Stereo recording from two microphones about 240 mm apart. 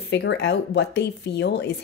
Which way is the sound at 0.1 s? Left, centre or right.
Left.